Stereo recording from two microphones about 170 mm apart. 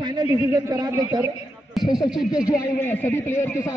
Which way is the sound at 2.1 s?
Centre (ahead or behind).